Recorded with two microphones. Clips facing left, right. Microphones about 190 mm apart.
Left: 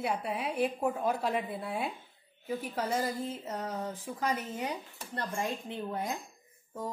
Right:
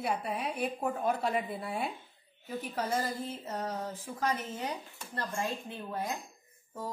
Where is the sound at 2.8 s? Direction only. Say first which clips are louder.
Even; 10° left (ahead or behind).